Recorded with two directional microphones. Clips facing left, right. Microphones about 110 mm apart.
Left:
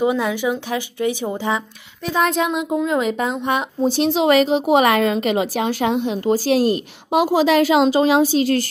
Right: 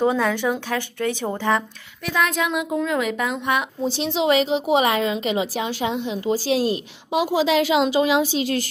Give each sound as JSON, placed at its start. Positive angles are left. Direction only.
{"t": 0.0, "sound": "speech", "side_deg": 10}
{"t": 2.0, "sound": "a woman's voice", "side_deg": 30}
{"t": 3.8, "sound": "a woman's voice", "side_deg": 50}